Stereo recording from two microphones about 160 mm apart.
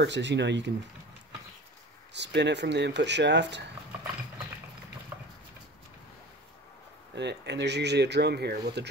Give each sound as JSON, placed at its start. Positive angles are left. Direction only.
{"t": 0.0, "sound": "speech", "side_deg": -90}
{"t": 2.1, "sound": "speech", "side_deg": -90}
{"t": 7.2, "sound": "speech", "side_deg": -90}